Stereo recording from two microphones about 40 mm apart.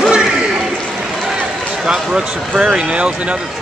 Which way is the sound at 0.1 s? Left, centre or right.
Centre.